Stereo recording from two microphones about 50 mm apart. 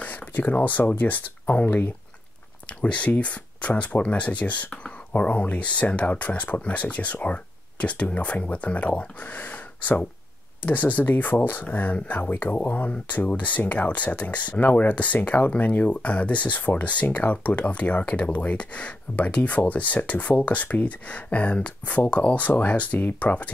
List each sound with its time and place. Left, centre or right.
0.0 s speech: left
2.8 s speech: left